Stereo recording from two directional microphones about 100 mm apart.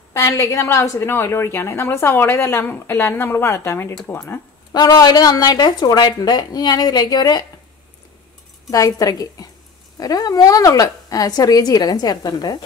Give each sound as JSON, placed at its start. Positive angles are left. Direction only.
{"t": 0.1, "sound": "a woman's voice", "side_deg": 30}
{"t": 4.7, "sound": "speech", "side_deg": 40}
{"t": 8.6, "sound": "a woman's voice", "side_deg": 35}